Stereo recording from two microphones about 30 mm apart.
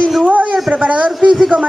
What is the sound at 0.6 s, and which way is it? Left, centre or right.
Speech, right.